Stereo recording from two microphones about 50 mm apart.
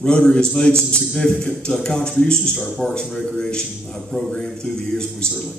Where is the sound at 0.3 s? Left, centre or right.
Centre.